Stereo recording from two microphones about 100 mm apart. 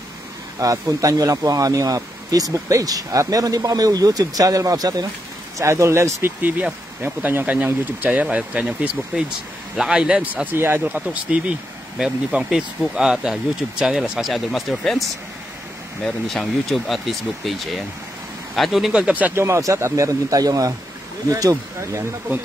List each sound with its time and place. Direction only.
0.6 s speech: 35° right (ahead or behind)
6.4 s speech: 15° right (ahead or behind)
19.4 s speech: 30° right (ahead or behind)